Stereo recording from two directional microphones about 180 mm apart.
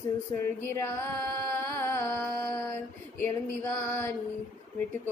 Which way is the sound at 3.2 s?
10° left (ahead or behind).